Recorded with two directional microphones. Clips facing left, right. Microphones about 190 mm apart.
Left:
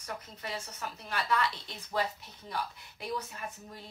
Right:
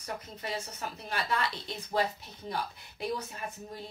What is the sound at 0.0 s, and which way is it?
A woman's voice, 25° right (ahead or behind).